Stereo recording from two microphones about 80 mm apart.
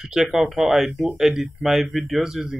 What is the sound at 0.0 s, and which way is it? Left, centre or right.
Speech, centre.